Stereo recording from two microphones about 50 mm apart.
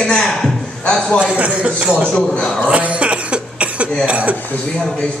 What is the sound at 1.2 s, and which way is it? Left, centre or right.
Speech, right.